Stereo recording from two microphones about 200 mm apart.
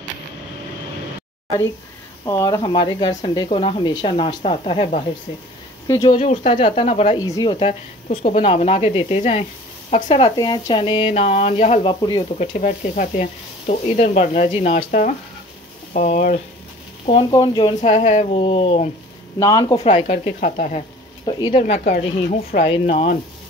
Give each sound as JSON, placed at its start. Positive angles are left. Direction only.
{"t": 2.2, "sound": "speech", "side_deg": 15}
{"t": 5.9, "sound": "speech", "side_deg": 15}
{"t": 6.1, "sound": "speech", "side_deg": 30}
{"t": 7.2, "sound": "speech", "side_deg": 15}
{"t": 7.5, "sound": "speech", "side_deg": 30}
{"t": 12.4, "sound": "speech", "side_deg": 40}
{"t": 14.8, "sound": "speech", "side_deg": 40}
{"t": 17.7, "sound": "speech", "side_deg": 35}
{"t": 19.4, "sound": "speech", "side_deg": 15}
{"t": 19.8, "sound": "speech", "side_deg": 30}
{"t": 21.3, "sound": "speech", "side_deg": 25}